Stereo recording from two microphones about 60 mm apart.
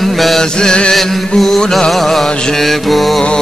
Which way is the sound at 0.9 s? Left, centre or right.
Centre.